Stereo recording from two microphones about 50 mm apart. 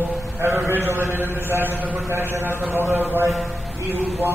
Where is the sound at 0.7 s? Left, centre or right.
Right.